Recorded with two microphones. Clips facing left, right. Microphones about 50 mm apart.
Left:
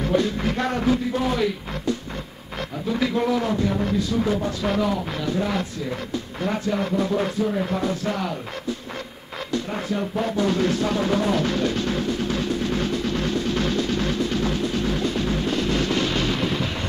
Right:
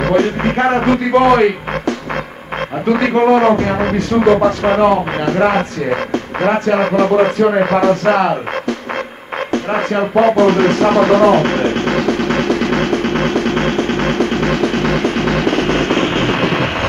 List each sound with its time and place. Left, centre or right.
0.0 s speech: right
4.6 s speech: right
9.5 s music: right